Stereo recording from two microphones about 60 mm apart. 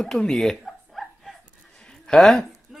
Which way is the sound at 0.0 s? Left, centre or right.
Centre.